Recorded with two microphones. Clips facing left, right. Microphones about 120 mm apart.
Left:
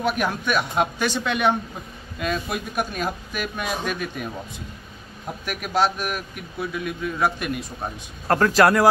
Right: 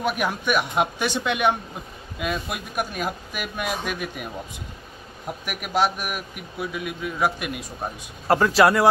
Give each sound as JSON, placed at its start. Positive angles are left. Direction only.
{"t": 0.0, "sound": "a man's voice", "side_deg": -10}
{"t": 5.4, "sound": "a man's voice", "side_deg": -10}